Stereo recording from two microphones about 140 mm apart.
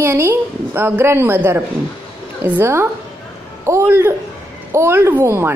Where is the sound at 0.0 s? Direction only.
20° right (ahead or behind).